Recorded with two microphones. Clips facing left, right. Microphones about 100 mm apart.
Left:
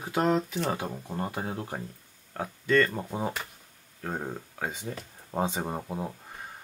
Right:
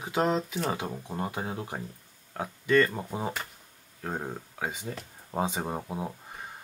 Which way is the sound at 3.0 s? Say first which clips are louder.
Left 1 dB; centre (ahead or behind).